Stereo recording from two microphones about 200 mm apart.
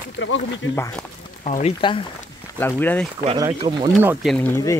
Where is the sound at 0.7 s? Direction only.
15° left (ahead or behind).